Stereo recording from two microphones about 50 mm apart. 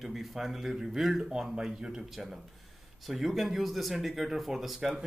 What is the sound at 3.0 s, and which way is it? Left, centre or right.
A man's voice, centre.